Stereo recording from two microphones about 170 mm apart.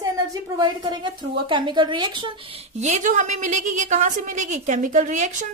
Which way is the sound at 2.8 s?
45° right (ahead or behind).